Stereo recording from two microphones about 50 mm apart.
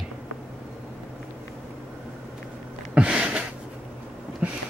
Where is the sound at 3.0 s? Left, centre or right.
Right.